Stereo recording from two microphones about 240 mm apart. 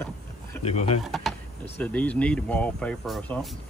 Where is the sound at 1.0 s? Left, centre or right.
Centre.